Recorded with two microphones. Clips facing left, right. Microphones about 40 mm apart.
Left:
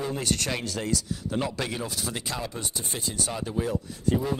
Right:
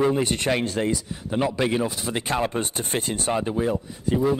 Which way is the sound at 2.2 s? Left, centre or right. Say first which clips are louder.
Right 9 dB; right.